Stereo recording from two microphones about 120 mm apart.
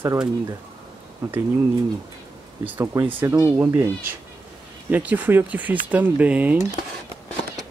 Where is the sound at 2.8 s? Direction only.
25° right (ahead or behind).